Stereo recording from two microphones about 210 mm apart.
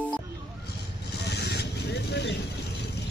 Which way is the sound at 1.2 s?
55° left (ahead or behind).